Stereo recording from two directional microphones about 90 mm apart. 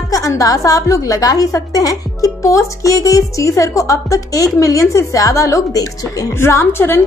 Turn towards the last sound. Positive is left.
turn(degrees=25)  # may be behind; listen again after turning